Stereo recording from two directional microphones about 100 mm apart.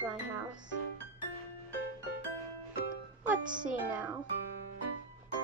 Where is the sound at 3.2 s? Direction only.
15° right (ahead or behind).